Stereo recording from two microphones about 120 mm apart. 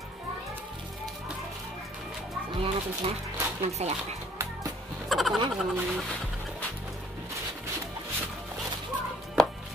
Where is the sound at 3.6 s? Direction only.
65° right (ahead or behind).